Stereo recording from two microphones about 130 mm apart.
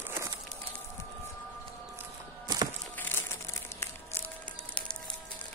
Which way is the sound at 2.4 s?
30° right (ahead or behind).